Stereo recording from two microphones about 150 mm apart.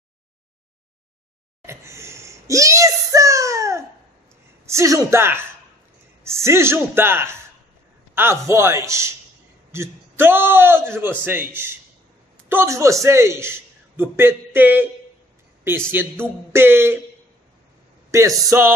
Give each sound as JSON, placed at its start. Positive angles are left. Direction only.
{"t": 1.7, "sound": "a sound", "side_deg": -20}
{"t": 4.6, "sound": "a woman's voice", "side_deg": -20}
{"t": 16.0, "sound": "a man's voice", "side_deg": -15}
{"t": 18.1, "sound": "a woman's voice", "side_deg": -20}